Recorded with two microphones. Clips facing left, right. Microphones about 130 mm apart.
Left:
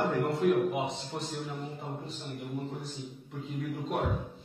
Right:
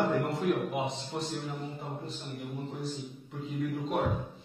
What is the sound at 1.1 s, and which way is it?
Speech, 5° right (ahead or behind).